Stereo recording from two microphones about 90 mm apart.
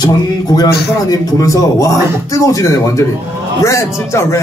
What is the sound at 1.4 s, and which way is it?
A man's voice, 40° left (ahead or behind).